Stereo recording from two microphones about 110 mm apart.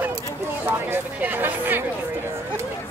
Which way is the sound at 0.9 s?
20° right (ahead or behind).